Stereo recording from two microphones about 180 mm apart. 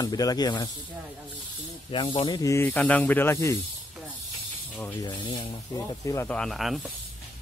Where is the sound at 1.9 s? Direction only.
30° left (ahead or behind).